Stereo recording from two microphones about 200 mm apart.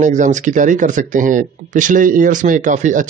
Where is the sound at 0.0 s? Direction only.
40° right (ahead or behind).